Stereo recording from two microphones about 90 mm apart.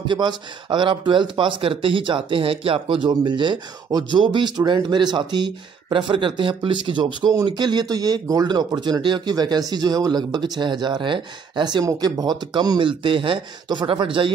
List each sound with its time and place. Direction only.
0.1 s speech: 55° right (ahead or behind)
11.8 s speech: 45° right (ahead or behind); by 14.3 s 70° right (ahead or behind)